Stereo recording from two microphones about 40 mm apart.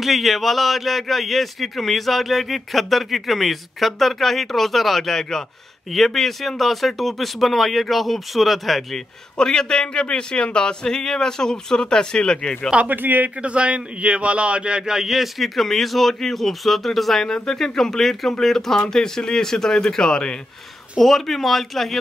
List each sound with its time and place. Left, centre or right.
0.0 s speech: centre
9.4 s speech: centre
12.8 s a man's voice: right
13.4 s speech: right; by 20.3 s left
21.0 s speech: centre